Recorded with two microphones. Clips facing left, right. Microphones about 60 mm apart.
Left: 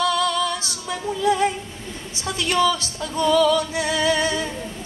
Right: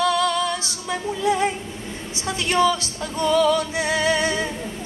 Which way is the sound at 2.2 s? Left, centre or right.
Right.